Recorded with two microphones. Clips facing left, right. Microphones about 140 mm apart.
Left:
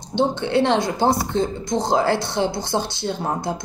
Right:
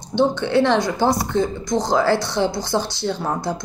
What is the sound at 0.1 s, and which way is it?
A woman's voice, 25° left (ahead or behind).